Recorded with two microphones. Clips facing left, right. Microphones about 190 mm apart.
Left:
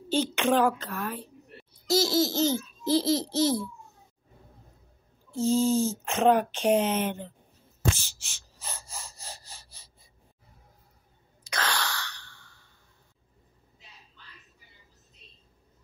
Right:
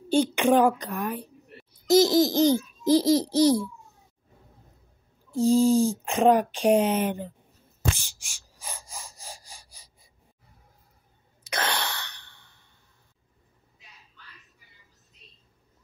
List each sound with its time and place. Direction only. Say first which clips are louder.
0.1 s laughter: right 4 dB; 15° right (ahead or behind)
5.5 s speech: right 4 dB; centre (ahead or behind)
7.9 s a sound: right 1 dB; 15° right (ahead or behind)
11.5 s sigh: right 2 dB; 20° right (ahead or behind)